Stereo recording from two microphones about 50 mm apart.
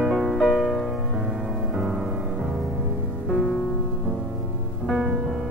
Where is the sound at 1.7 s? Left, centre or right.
Centre.